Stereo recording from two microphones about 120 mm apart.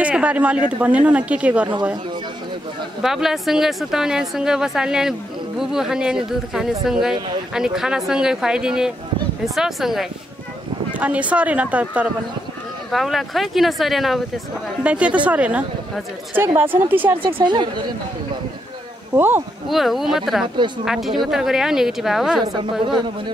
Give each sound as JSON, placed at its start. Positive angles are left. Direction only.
{"t": 0.0, "sound": "a man's voice", "side_deg": -10}
{"t": 3.0, "sound": "speech", "side_deg": -5}
{"t": 12.9, "sound": "speech", "side_deg": 0}
{"t": 17.4, "sound": "speech", "side_deg": -40}
{"t": 19.1, "sound": "speech", "side_deg": -15}
{"t": 19.7, "sound": "speech", "side_deg": 0}
{"t": 22.4, "sound": "a woman's voice", "side_deg": -45}